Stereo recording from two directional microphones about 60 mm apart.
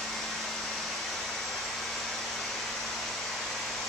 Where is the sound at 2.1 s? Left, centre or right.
Centre.